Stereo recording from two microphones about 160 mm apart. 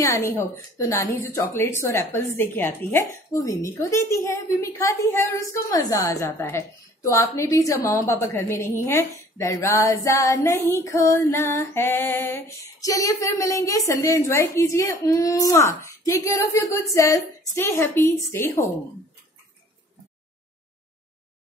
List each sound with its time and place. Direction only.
0.0 s a woman's voice: 20° left (ahead or behind)